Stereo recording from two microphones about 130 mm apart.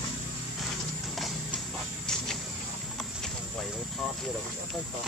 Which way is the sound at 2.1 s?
5° left (ahead or behind).